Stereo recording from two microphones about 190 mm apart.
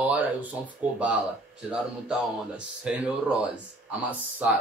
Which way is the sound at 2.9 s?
5° right (ahead or behind).